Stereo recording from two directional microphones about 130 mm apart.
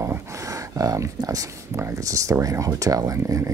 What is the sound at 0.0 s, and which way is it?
Speech, 25° right (ahead or behind).